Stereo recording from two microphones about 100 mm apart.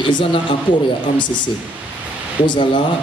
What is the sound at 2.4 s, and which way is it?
Speech, 50° left (ahead or behind).